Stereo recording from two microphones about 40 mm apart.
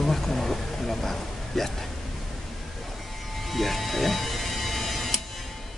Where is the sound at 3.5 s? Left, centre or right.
Centre.